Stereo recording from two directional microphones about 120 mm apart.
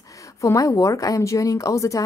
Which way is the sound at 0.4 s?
25° left (ahead or behind).